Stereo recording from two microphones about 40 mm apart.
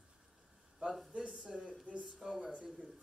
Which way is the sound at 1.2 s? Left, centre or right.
Right.